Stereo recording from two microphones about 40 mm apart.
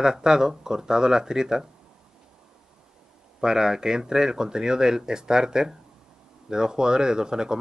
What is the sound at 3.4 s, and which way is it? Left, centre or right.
Speech, centre.